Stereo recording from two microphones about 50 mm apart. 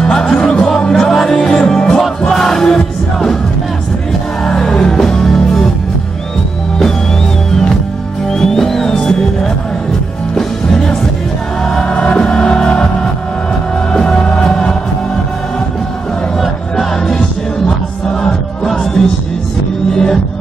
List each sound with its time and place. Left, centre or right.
0.0 s music: centre
4.5 s music: centre
8.3 s music: centre
16.3 s music: centre